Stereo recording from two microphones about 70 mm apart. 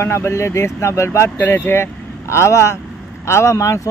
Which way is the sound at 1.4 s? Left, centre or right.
Left.